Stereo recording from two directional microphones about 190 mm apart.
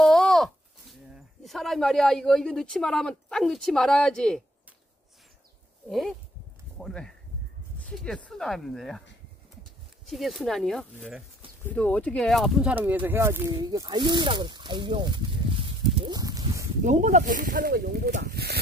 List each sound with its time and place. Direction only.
0.0 s speech: centre (ahead or behind)
5.9 s speech: centre (ahead or behind)
10.0 s speech: centre (ahead or behind); by 16.6 s 20° right (ahead or behind)
16.8 s speech: 40° right (ahead or behind); by 18.6 s 55° right (ahead or behind)